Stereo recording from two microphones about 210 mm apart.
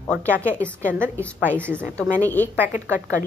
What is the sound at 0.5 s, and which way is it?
Speech, 5° left (ahead or behind).